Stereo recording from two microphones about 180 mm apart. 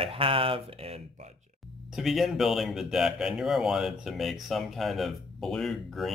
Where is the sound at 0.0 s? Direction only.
30° right (ahead or behind).